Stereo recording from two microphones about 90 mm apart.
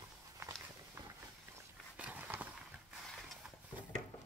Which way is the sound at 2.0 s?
15° right (ahead or behind).